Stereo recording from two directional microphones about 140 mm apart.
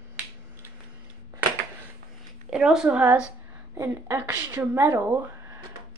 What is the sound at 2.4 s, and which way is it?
Speech, 5° right (ahead or behind).